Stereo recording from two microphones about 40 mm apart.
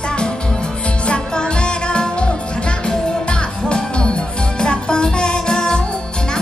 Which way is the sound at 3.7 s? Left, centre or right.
Left.